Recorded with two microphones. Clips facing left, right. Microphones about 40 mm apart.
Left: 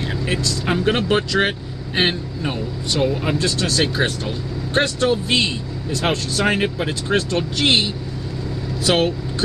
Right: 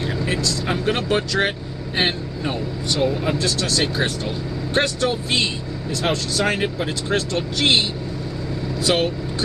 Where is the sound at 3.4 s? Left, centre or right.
Left.